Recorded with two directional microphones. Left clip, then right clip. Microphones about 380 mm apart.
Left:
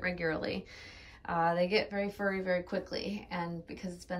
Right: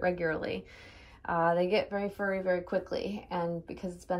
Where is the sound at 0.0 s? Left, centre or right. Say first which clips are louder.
Right 3 dB; centre.